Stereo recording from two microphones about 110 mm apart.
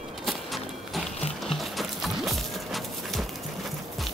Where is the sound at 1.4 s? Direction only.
Centre (ahead or behind).